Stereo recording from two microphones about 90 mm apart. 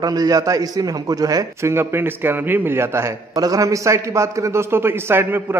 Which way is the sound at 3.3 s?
40° right (ahead or behind).